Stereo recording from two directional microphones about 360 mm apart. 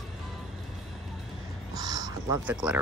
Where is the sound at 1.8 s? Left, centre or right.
Centre.